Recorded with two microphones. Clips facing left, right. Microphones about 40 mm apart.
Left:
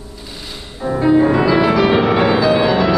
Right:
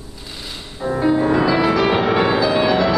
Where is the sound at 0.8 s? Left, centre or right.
Centre.